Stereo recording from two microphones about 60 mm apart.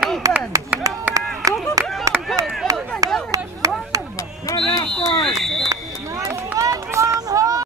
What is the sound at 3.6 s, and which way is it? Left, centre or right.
Chop, right.